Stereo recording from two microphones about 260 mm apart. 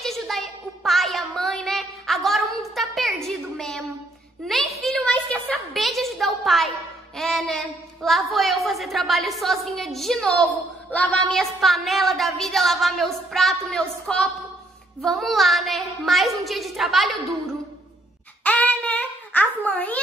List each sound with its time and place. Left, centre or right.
0.0 s child singing: centre
4.5 s a sound: centre
7.2 s a woman's voice: centre
18.4 s babbling: centre